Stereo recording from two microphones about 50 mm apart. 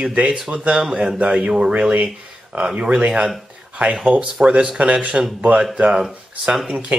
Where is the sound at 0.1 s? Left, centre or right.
Right.